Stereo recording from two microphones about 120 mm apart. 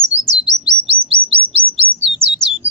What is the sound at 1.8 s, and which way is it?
Bird, 50° right (ahead or behind).